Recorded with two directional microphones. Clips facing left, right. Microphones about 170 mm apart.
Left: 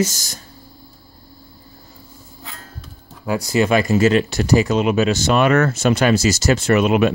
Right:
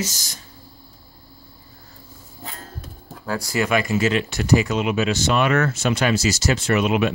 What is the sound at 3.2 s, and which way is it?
Speech, 20° left (ahead or behind).